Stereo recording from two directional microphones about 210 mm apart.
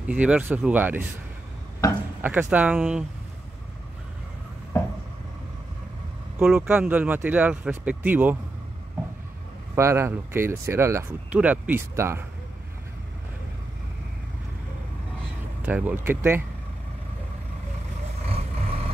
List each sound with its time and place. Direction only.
0.1 s speech: 5° right (ahead or behind)
1.8 s speech: 15° left (ahead or behind)
2.2 s speech: 5° right (ahead or behind)
4.7 s a sound: 10° left (ahead or behind)
6.3 s speech: 5° right (ahead or behind)
9.8 s speech: 15° right (ahead or behind)
15.6 s speech: 10° right (ahead or behind)